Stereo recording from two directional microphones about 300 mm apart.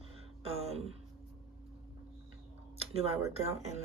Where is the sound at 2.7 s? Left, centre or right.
Centre.